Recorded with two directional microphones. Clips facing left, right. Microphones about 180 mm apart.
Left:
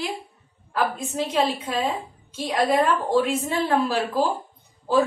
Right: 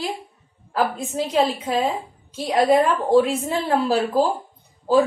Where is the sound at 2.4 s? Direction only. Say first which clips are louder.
Right 4 dB; 35° right (ahead or behind).